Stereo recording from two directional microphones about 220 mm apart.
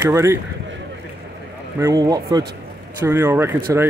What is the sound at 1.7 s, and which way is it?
Speech, 15° right (ahead or behind).